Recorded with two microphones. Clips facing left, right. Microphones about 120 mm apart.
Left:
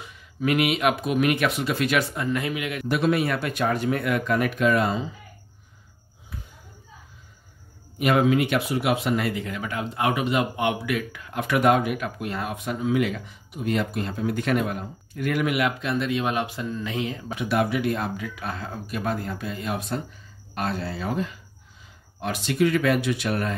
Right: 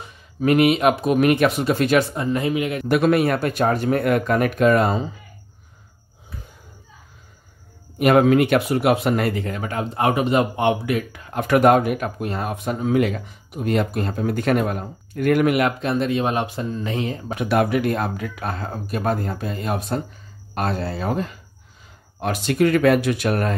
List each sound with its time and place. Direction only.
0.0 s speech: 40° right (ahead or behind)
2.9 s speech: 55° right (ahead or behind)
8.0 s speech: 50° right (ahead or behind)